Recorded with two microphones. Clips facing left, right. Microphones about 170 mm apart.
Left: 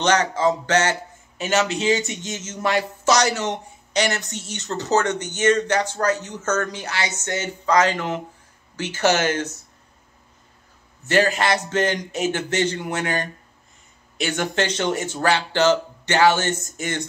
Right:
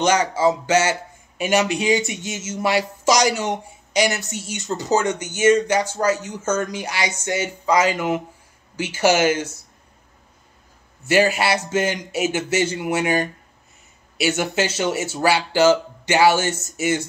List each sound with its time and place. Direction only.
0.0 s speech: 10° right (ahead or behind)
11.1 s speech: 10° right (ahead or behind)